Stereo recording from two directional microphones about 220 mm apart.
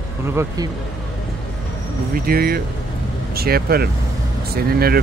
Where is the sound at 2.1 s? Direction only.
45° right (ahead or behind).